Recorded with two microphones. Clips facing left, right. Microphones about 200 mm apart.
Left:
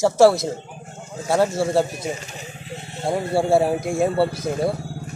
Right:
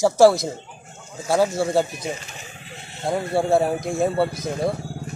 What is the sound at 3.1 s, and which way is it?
Speech, 25° left (ahead or behind).